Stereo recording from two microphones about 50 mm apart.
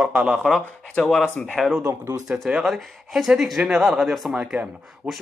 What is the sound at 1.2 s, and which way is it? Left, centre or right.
Speech, centre.